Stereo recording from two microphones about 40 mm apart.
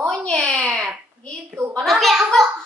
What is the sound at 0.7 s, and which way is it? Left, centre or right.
Speech, centre.